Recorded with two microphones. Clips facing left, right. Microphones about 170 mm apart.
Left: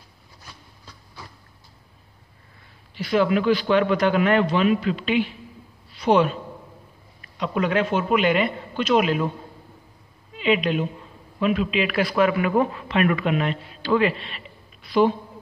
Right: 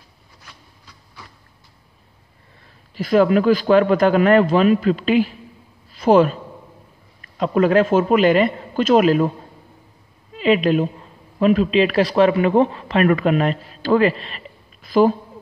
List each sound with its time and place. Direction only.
3.0 s a man's voice: 45° right (ahead or behind)
7.3 s a man's voice: 45° right (ahead or behind)
10.3 s a woman's voice: 40° right (ahead or behind)
12.8 s a man's voice: 40° right (ahead or behind)